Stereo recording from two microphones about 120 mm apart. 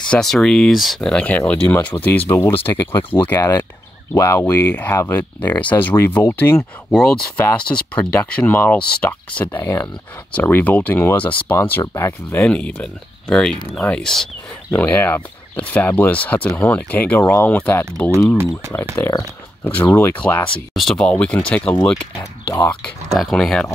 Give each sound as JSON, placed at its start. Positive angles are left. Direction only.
{"t": 0.1, "sound": "speech", "side_deg": 5}
{"t": 3.3, "sound": "speech", "side_deg": 30}
{"t": 6.9, "sound": "speech", "side_deg": 5}
{"t": 11.8, "sound": "speech", "side_deg": 25}
{"t": 12.1, "sound": "speech", "side_deg": 15}
{"t": 20.7, "sound": "speech", "side_deg": 5}
{"t": 23.0, "sound": "speech", "side_deg": 0}